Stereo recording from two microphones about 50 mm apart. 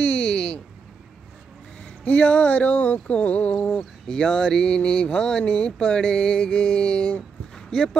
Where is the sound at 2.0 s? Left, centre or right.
Left.